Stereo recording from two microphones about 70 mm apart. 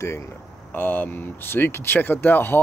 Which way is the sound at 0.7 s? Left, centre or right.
Left.